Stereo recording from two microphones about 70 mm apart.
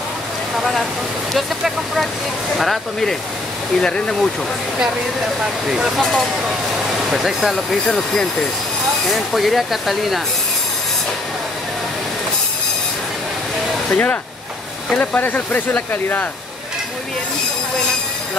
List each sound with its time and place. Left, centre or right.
0.6 s speech: centre
5.7 s speech: centre
13.9 s speech: left